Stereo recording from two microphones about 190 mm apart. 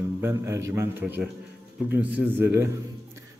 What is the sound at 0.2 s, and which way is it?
A man's voice, 15° right (ahead or behind).